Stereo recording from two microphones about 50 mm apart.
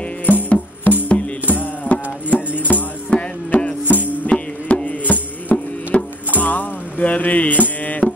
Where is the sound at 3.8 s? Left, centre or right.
Left.